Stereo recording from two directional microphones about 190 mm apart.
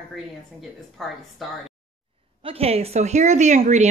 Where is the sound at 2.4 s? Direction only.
30° right (ahead or behind).